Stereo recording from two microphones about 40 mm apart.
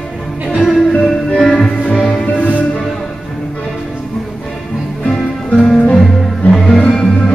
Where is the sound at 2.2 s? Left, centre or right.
Left.